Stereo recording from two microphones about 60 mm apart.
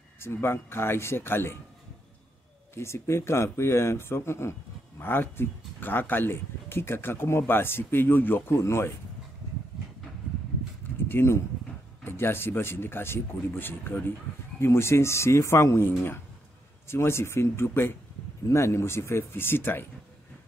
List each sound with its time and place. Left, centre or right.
0.2 s speech: left
2.7 s speech: left
8.5 s speech: left
11.1 s speech: left